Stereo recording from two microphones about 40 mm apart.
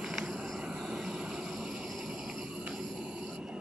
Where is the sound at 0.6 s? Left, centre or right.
Centre.